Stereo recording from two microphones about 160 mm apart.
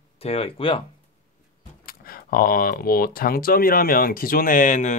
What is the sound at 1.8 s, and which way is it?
Speech, 65° left (ahead or behind).